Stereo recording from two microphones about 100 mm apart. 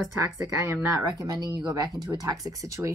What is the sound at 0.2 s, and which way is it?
A woman's voice, 30° right (ahead or behind).